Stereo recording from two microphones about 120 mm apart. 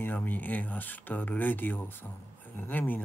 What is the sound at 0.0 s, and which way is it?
Speech, 15° left (ahead or behind).